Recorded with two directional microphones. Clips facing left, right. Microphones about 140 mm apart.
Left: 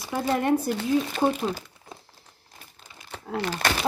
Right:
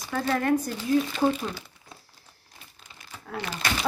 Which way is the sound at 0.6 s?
65° left (ahead or behind).